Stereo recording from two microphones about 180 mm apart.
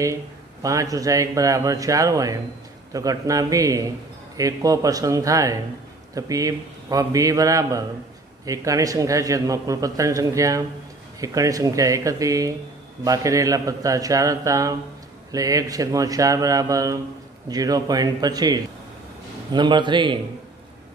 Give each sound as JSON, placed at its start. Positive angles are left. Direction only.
{"t": 0.0, "sound": "speech", "side_deg": -20}